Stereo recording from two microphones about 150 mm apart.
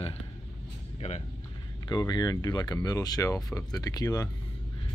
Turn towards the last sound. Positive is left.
turn(degrees=25)  # may be behind; listen again after turning